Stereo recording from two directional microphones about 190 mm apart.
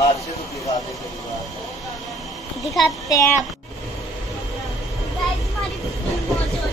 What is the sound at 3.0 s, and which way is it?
Speech, 15° left (ahead or behind).